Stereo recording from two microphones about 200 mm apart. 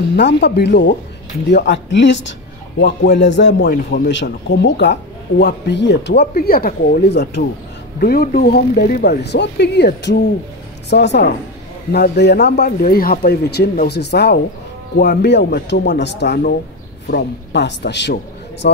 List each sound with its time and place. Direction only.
0.1 s a man's voice: 60° left (ahead or behind)